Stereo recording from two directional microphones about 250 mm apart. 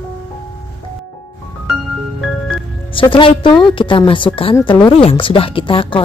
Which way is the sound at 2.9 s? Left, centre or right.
Left.